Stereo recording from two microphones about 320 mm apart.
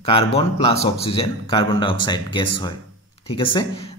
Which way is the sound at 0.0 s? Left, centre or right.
Centre.